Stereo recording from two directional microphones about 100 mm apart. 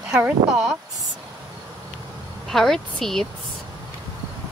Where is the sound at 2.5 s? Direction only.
5° left (ahead or behind).